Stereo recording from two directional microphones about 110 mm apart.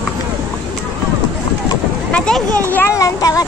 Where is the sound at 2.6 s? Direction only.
20° left (ahead or behind).